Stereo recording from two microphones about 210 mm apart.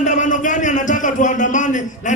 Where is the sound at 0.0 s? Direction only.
35° left (ahead or behind).